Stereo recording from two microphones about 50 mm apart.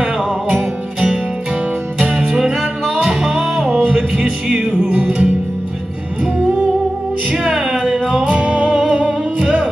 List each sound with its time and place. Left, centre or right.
3.0 s music: centre
7.4 s music: centre